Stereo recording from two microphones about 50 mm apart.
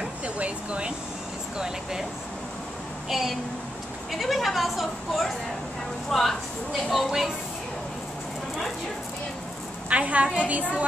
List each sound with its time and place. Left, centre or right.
0.0 s a sound: right
1.6 s speech: centre
3.1 s a woman's voice: centre
9.8 s a woman's voice: right